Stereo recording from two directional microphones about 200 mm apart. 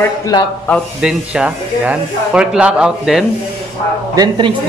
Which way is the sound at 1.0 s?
5° right (ahead or behind).